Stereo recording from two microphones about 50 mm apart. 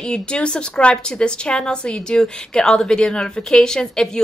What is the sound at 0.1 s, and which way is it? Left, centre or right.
A woman's voice, centre.